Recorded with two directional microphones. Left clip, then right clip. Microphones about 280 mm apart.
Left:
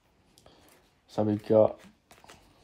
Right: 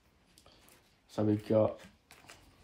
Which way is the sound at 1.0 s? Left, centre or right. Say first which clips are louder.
Left 4 dB; left.